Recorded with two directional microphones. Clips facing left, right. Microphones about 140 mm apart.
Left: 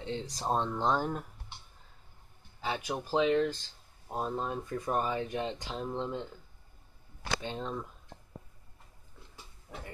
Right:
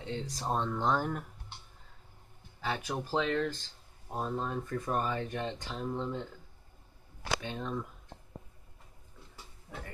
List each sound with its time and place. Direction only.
0.0 s speech: 25° left (ahead or behind)
2.6 s speech: 10° left (ahead or behind)
5.7 s speech: 25° left (ahead or behind)
7.4 s speech: 25° left (ahead or behind)
9.7 s pig: 10° left (ahead or behind)